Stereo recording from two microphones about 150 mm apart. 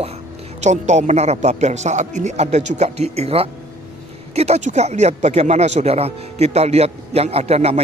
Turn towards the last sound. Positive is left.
turn(degrees=-45)  # may be behind; listen again after turning